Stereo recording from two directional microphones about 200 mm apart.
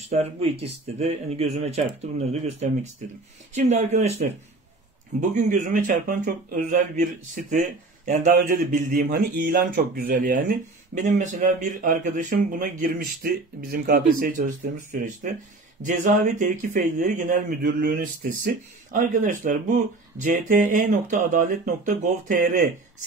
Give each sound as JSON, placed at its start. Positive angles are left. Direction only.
{"t": 0.0, "sound": "speech", "side_deg": -30}
{"t": 5.3, "sound": "speech", "side_deg": -40}
{"t": 15.8, "sound": "speech", "side_deg": -40}